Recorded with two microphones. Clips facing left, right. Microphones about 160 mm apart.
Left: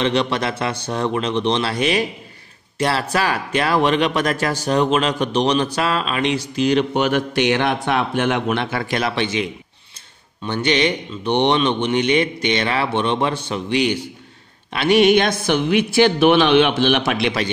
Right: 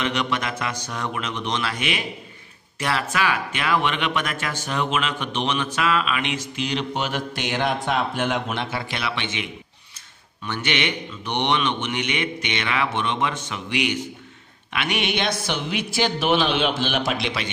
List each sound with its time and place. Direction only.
0.0 s speech: 30° left (ahead or behind); by 17.3 s 65° left (ahead or behind)